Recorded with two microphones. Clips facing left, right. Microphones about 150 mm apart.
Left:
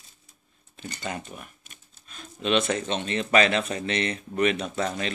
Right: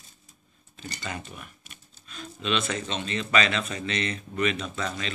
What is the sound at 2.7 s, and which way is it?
Speech, 55° left (ahead or behind).